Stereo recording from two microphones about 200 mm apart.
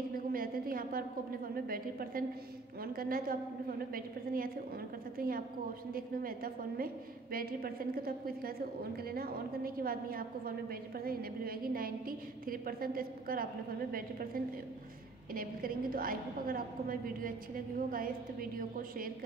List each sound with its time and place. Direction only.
0.1 s a sound: 45° right (ahead or behind)
1.5 s a woman's voice: 45° right (ahead or behind)
15.3 s a woman's voice: 45° right (ahead or behind)